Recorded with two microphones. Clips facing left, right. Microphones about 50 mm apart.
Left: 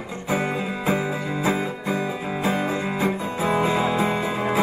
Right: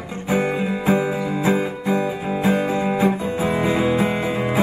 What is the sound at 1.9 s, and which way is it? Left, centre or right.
Music, right.